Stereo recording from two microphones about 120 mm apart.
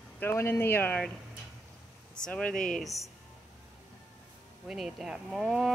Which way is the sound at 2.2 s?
10° left (ahead or behind).